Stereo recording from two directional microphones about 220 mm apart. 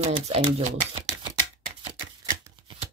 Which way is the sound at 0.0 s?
25° right (ahead or behind).